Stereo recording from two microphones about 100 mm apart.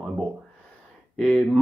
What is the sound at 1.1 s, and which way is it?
Speech, 5° left (ahead or behind).